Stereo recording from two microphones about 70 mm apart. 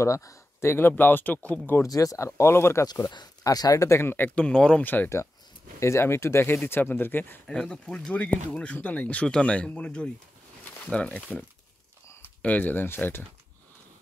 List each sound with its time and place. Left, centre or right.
0.0 s speech: left
1.9 s speech: left
3.1 s speech: left
4.4 s speech: centre
4.8 s speech: left
5.8 s speech: left
7.4 s speech: centre
10.6 s a sound: centre
12.4 s speech: left